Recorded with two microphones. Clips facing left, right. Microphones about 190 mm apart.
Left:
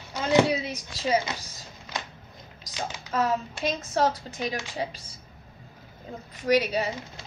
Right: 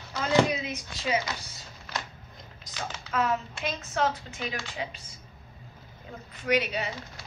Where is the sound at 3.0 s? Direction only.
40° left (ahead or behind).